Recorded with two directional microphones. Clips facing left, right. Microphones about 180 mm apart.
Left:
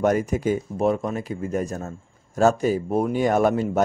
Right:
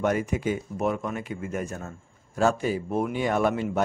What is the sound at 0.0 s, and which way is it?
Speech, 40° left (ahead or behind).